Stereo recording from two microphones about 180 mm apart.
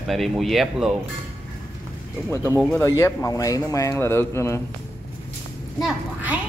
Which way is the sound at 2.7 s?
15° left (ahead or behind).